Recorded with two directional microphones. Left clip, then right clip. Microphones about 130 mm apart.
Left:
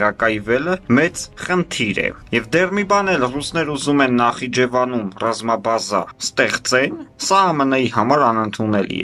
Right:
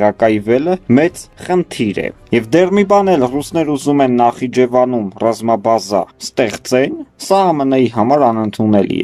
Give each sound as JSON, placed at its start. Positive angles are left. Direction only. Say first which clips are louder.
{"t": 0.0, "sound": "speech", "louder": "right 5 dB", "side_deg": -45}